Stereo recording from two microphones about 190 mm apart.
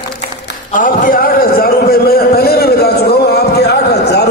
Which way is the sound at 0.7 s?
45° left (ahead or behind).